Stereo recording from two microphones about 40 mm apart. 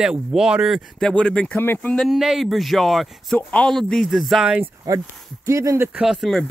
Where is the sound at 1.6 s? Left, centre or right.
Left.